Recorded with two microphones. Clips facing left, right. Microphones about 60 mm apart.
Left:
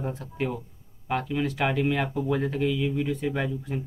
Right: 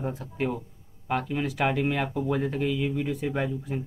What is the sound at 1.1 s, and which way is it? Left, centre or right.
Speech, right.